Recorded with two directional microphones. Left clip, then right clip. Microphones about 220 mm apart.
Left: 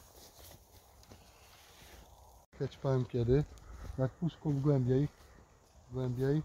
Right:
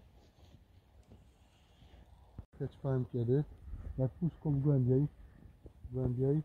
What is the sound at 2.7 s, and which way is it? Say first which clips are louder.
Speech: left 3 dB; 30° left (ahead or behind).